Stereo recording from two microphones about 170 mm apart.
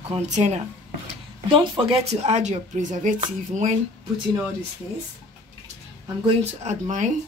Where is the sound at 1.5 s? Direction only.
30° right (ahead or behind); by 3.7 s 50° right (ahead or behind).